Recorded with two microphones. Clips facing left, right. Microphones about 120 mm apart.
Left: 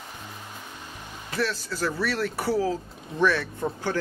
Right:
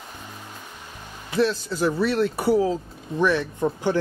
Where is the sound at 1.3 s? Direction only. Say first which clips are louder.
Right 6 dB; 20° right (ahead or behind).